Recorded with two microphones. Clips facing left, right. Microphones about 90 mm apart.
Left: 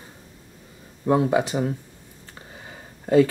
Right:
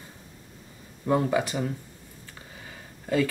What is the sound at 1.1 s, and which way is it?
Speech, 15° left (ahead or behind).